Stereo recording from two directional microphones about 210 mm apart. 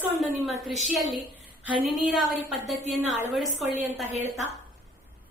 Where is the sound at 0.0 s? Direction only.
5° right (ahead or behind).